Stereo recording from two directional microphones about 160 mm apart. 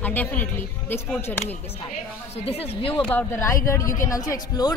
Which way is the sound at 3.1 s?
15° left (ahead or behind).